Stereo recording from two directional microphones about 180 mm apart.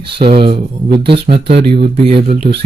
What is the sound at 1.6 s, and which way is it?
Speech, 30° right (ahead or behind).